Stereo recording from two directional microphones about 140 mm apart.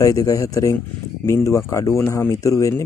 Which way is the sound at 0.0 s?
20° left (ahead or behind).